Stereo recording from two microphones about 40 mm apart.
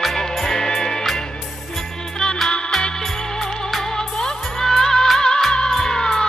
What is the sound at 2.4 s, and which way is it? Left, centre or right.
Music, left.